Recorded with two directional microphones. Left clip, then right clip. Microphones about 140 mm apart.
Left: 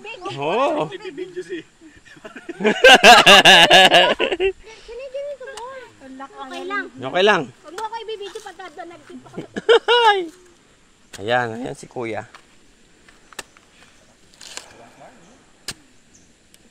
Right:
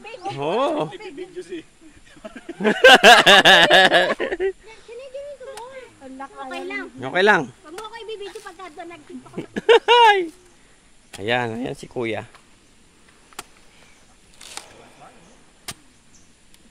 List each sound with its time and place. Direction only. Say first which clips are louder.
0.0 s speech: left 1 dB; 10° right (ahead or behind)
4.1 s speech: left 4 dB; 15° left (ahead or behind)
6.6 s speech: left 7 dB; 15° right (ahead or behind)
8.5 s snake: left 2 dB; 25° right (ahead or behind)
9.3 s speech: even; 25° right (ahead or behind)